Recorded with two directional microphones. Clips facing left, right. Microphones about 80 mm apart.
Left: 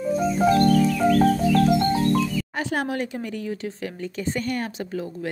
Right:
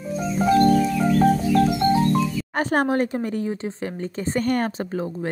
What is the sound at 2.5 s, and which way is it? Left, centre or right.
Speech, right.